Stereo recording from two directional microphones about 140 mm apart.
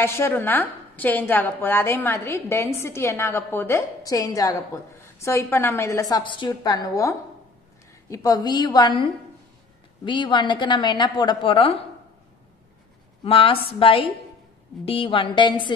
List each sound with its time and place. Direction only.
0.0 s a woman's voice: 20° left (ahead or behind)
10.0 s a woman's voice: 35° left (ahead or behind)
13.2 s a woman's voice: 40° left (ahead or behind)